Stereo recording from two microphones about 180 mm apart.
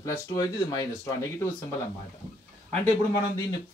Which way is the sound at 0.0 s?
20° left (ahead or behind).